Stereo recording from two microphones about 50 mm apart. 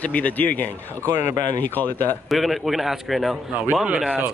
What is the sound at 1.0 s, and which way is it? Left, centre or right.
Speech, right.